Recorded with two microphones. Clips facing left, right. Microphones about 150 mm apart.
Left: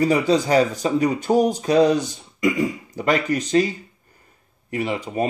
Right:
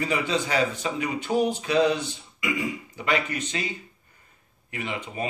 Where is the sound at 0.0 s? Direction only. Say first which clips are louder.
Left 8 dB; 40° left (ahead or behind).